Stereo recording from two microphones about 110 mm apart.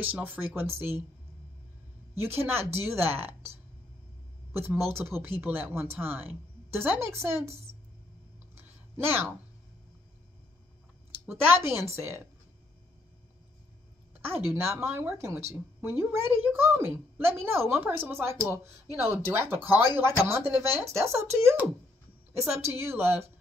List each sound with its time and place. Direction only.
0.0 s a woman's voice: 15° right (ahead or behind)
2.1 s a woman's voice: 20° right (ahead or behind)
4.6 s a woman's voice: 20° right (ahead or behind)
8.5 s a sound: 20° right (ahead or behind)
11.2 s a woman's voice: 20° right (ahead or behind)
14.2 s a woman's voice: 20° right (ahead or behind)